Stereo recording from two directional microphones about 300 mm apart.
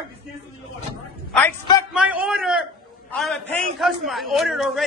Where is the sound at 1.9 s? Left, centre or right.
Centre.